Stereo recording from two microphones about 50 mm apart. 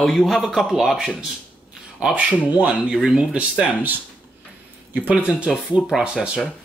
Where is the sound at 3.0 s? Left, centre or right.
Centre.